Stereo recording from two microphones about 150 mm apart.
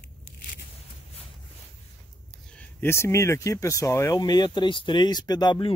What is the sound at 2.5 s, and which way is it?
Speech, 15° left (ahead or behind).